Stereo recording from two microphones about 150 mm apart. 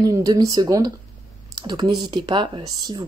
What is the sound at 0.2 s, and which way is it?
Speech, 25° right (ahead or behind).